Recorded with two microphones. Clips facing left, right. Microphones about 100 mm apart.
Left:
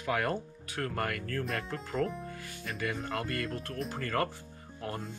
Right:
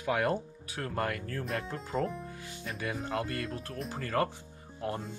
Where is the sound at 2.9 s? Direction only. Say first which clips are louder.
Right 1 dB; 10° right (ahead or behind).